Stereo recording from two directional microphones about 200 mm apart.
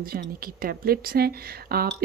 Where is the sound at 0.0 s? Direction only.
45° right (ahead or behind).